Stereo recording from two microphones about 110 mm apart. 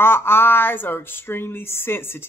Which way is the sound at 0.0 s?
20° left (ahead or behind).